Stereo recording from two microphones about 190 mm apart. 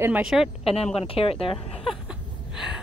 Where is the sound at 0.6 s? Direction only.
30° left (ahead or behind).